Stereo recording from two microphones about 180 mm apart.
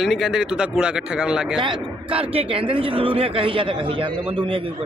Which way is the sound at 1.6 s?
30° right (ahead or behind).